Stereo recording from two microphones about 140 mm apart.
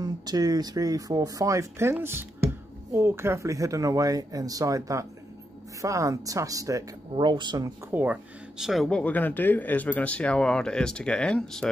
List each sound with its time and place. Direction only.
0.0 s speech: 30° right (ahead or behind)
7.9 s speech: 10° right (ahead or behind); by 11.7 s 5° left (ahead or behind)